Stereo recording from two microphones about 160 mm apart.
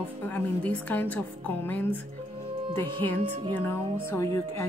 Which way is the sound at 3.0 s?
10° left (ahead or behind).